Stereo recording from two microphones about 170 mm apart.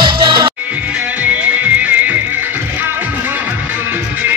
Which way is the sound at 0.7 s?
5° right (ahead or behind).